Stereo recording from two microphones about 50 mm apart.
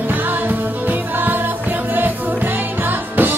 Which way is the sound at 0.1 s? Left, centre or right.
Right.